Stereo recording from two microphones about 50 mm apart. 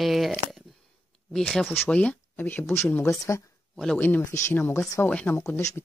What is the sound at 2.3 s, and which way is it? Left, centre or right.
Speech, left.